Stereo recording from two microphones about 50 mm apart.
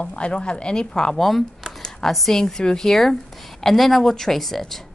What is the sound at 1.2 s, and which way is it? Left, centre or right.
A woman's voice, centre.